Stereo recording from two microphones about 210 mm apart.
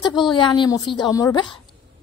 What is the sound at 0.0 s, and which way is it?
Speech, 20° left (ahead or behind).